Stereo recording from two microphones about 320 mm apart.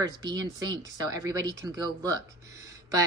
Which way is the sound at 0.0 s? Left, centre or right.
Centre.